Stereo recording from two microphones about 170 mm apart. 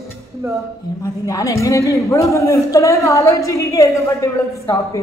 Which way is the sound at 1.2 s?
20° left (ahead or behind).